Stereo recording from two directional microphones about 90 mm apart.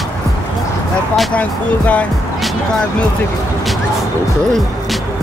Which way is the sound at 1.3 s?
15° left (ahead or behind).